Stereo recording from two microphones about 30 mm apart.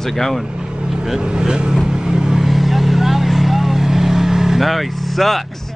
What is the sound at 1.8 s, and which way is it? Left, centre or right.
Vehicle, centre.